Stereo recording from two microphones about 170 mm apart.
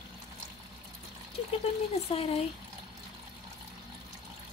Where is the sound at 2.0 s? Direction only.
35° left (ahead or behind).